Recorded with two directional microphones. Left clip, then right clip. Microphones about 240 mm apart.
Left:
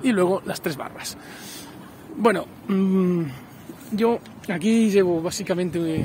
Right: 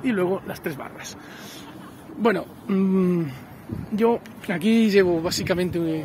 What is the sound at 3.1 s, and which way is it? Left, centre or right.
Speech, centre.